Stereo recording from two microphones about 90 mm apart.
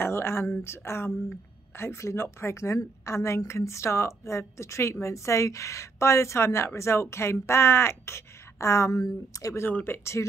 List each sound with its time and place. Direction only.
0.0 s a woman's voice: 30° left (ahead or behind)
9.6 s speech: 20° left (ahead or behind)